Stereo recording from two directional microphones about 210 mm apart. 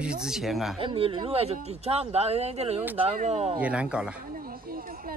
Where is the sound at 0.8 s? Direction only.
25° right (ahead or behind).